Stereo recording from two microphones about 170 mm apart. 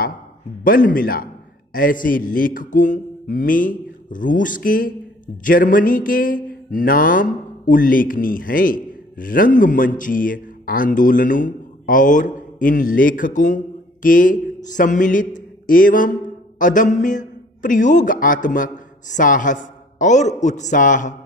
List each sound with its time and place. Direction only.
0.7 s a man's voice: 55° left (ahead or behind)